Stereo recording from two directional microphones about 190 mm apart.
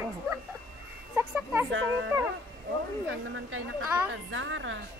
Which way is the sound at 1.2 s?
10° right (ahead or behind).